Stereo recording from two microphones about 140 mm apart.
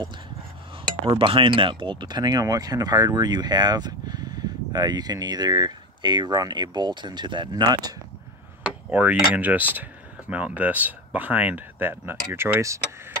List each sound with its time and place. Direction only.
1.0 s speech: 40° right (ahead or behind)
8.6 s tick-tock: 10° right (ahead or behind)
9.3 s speech: 10° right (ahead or behind)